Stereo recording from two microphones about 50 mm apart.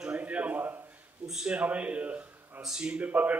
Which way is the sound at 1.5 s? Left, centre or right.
Right.